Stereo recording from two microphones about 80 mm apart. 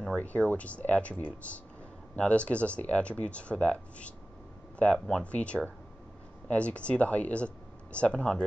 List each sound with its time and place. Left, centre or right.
0.1 s speech: centre